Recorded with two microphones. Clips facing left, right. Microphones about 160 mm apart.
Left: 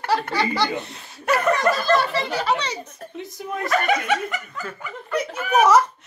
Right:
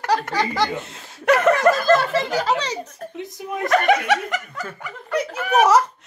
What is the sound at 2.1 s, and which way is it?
Speech, 40° right (ahead or behind).